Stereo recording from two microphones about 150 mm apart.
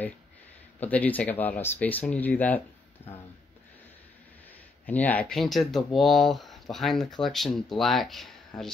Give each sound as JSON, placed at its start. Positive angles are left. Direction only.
{"t": 0.7, "sound": "speech", "side_deg": 10}
{"t": 4.8, "sound": "speech", "side_deg": 10}